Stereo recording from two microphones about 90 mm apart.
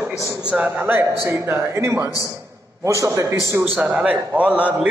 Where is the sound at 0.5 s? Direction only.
20° right (ahead or behind).